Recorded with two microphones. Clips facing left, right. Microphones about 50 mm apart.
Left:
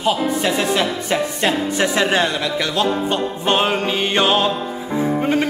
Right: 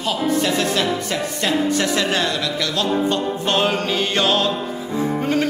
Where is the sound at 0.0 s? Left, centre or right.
Centre.